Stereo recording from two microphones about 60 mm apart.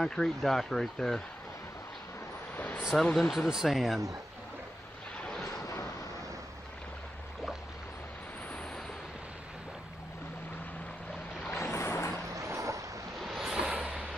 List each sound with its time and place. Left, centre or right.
0.0 s speech: centre
2.5 s vehicle: left
2.9 s speech: centre
11.5 s vehicle: left
12.3 s boat: right
13.2 s waves: centre
13.5 s vehicle: centre